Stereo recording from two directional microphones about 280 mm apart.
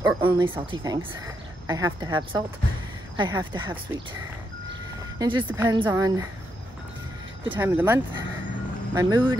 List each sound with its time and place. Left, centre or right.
0.0 s speech: centre
5.2 s speech: centre
7.5 s speech: centre